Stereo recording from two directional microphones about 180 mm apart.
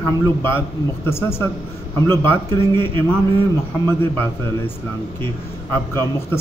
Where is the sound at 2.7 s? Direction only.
30° right (ahead or behind).